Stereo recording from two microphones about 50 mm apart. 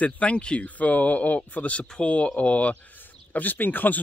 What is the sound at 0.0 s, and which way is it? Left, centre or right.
Speech, left.